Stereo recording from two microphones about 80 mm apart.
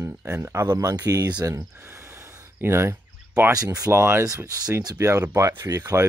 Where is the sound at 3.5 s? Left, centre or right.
Right.